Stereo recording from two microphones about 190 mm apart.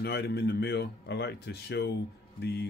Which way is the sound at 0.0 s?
60° left (ahead or behind).